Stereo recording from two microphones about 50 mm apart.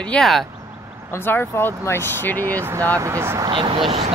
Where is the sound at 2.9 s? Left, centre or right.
Right.